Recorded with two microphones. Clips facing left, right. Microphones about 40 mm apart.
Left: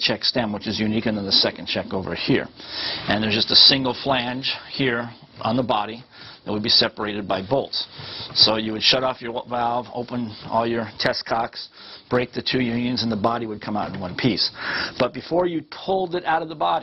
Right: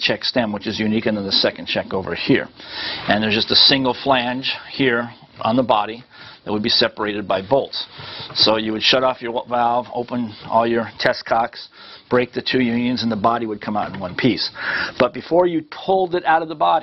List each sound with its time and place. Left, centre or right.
0.1 s speech: centre
0.8 s speech: centre
1.3 s speech: centre
1.8 s speech: centre
3.8 s speech: centre
9.0 s speech: centre
12.9 s speech: centre
14.3 s speech: centre
15.1 s speech: centre